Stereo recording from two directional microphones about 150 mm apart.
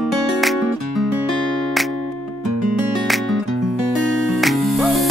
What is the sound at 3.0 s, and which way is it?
Music, centre (ahead or behind).